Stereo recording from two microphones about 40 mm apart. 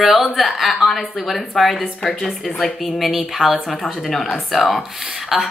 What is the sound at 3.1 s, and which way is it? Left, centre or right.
Speech, centre.